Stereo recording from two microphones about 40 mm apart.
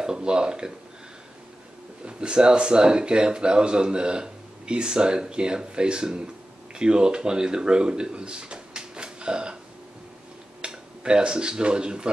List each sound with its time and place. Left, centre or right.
0.0 s speech: centre
2.0 s a man's voice: right
10.6 s speech: right